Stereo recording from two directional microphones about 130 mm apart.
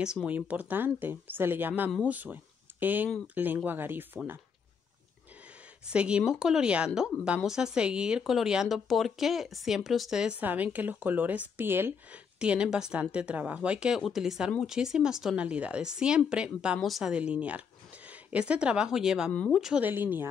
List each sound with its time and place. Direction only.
0.0 s speech: 5° right (ahead or behind)
5.9 s speech: 5° right (ahead or behind)
19.8 s speech: 15° right (ahead or behind)